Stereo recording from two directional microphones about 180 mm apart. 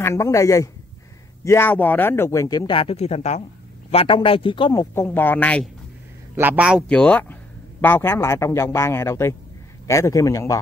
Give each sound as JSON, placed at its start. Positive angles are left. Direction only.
{"t": 0.0, "sound": "speech", "side_deg": 15}
{"t": 4.9, "sound": "speech", "side_deg": 10}
{"t": 6.3, "sound": "a man's voice", "side_deg": -10}
{"t": 6.9, "sound": "speech", "side_deg": 5}